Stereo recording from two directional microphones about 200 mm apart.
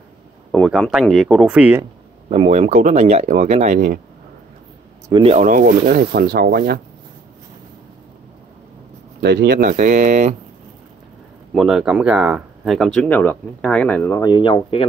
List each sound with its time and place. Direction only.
0.5 s speech: centre (ahead or behind)
2.2 s speech: 30° right (ahead or behind)
5.1 s speech: 30° right (ahead or behind); by 6.8 s 50° right (ahead or behind)
9.2 s speech: 55° right (ahead or behind)
9.6 s speech: 40° right (ahead or behind)
11.5 s speech: centre (ahead or behind); by 14.9 s 25° left (ahead or behind)